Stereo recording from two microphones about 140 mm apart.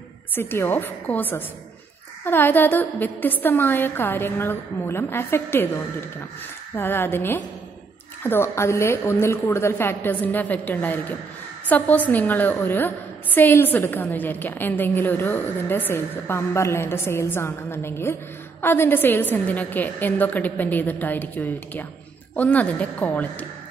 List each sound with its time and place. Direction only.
0.3 s a woman's voice: 15° left (ahead or behind)